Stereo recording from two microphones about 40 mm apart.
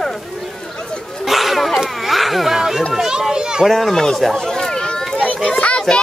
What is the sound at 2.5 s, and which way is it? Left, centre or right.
A child's voice, centre.